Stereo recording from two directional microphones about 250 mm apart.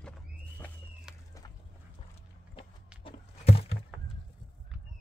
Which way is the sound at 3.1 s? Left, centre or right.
Left.